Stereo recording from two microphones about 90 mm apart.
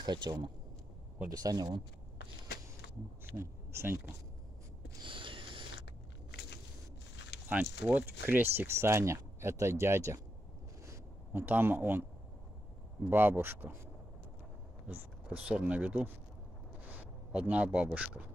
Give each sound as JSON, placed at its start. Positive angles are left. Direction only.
{"t": 0.0, "sound": "speech", "side_deg": -55}
{"t": 1.3, "sound": "speech", "side_deg": -45}
{"t": 3.3, "sound": "speech", "side_deg": -25}
{"t": 5.0, "sound": "a sound", "side_deg": -65}
{"t": 7.4, "sound": "speech", "side_deg": -20}
{"t": 10.9, "sound": "a sound", "side_deg": -20}
{"t": 13.1, "sound": "speech", "side_deg": -20}
{"t": 14.9, "sound": "speech", "side_deg": -15}